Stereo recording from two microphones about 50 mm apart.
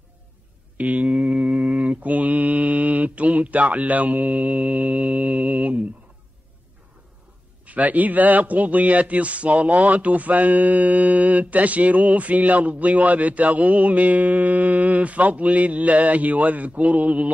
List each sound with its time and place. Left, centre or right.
0.7 s a sound: right
1.0 s mantra: centre
7.6 s a man's voice: right